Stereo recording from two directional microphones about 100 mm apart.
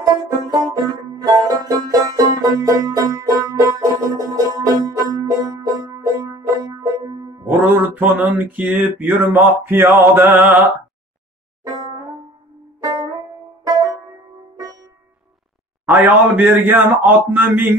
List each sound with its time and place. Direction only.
0.0 s banjo: 40° right (ahead or behind)
7.4 s mantra: 20° right (ahead or behind)
11.6 s music: 40° right (ahead or behind)
13.7 s music: 40° right (ahead or behind)
14.6 s sitar: 40° right (ahead or behind)
15.8 s a man's voice: 15° right (ahead or behind)